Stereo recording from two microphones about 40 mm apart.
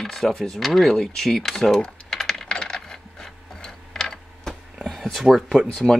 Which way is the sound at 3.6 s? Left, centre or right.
Centre.